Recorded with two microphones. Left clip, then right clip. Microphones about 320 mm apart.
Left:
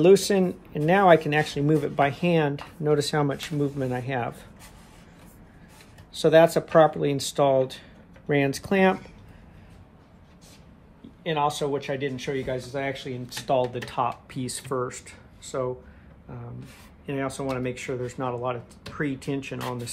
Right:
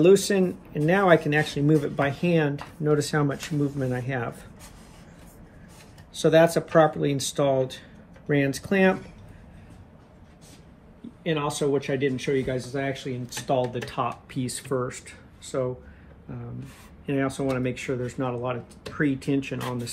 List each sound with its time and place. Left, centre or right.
0.0 s speech: left
6.1 s speech: left
11.2 s speech: left
17.0 s speech: left